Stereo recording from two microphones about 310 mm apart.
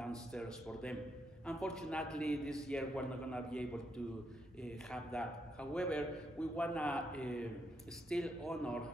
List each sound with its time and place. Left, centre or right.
0.0 s a man's voice: centre